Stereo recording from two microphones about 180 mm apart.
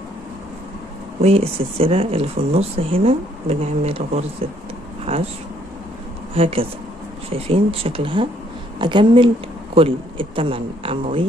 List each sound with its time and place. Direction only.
1.2 s speech: 35° right (ahead or behind)
6.3 s speech: 30° right (ahead or behind)